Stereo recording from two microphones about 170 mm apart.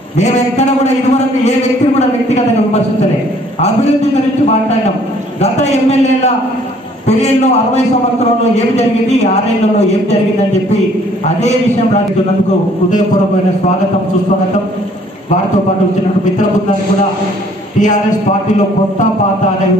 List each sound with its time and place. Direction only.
5.4 s a man's voice: 40° left (ahead or behind)
8.5 s a man's voice: 40° left (ahead or behind)